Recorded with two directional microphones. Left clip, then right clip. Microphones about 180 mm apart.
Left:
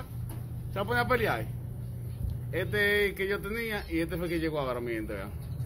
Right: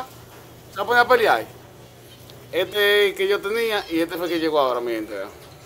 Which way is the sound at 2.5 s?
25° right (ahead or behind).